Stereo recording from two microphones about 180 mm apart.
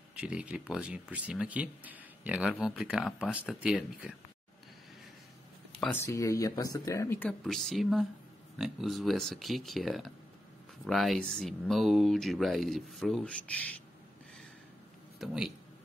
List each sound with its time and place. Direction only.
0.1 s speech: 5° right (ahead or behind)
5.9 s speech: 20° left (ahead or behind)
15.1 s speech: centre (ahead or behind)